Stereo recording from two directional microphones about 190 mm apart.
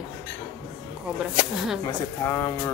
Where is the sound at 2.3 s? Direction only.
10° left (ahead or behind).